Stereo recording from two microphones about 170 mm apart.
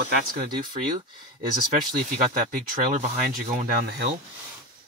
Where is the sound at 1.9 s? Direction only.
50° right (ahead or behind).